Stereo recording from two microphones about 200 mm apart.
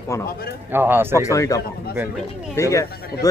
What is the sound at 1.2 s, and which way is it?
A man's voice, 15° left (ahead or behind).